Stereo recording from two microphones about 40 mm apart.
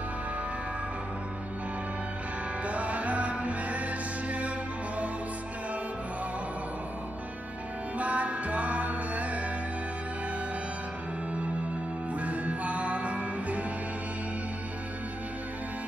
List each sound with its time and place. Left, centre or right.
2.6 s music: right
8.0 s music: right
12.2 s music: right